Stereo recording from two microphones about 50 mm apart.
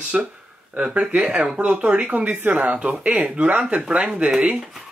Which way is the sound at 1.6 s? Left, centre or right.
Right.